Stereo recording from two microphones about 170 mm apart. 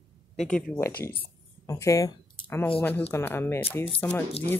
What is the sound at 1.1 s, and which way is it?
Speech, 15° left (ahead or behind).